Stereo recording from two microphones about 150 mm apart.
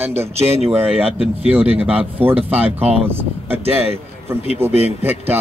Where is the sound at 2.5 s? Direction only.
10° right (ahead or behind).